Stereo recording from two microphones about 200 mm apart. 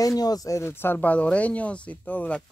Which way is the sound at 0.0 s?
20° left (ahead or behind).